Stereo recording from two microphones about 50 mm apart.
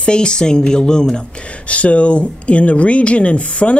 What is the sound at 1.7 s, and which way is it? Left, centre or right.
Speech, left.